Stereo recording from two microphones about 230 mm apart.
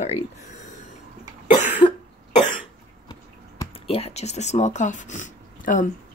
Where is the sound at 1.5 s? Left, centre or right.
Left.